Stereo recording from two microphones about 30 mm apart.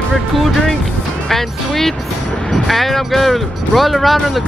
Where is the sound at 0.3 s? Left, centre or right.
Centre.